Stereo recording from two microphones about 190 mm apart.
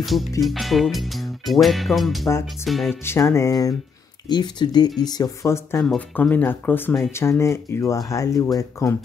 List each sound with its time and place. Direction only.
0.4 s speech: centre (ahead or behind)
3.1 s speech: 15° left (ahead or behind)
5.8 s speech: 5° left (ahead or behind)